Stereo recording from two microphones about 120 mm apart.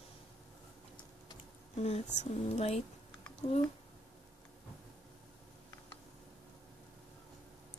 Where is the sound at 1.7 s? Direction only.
60° left (ahead or behind).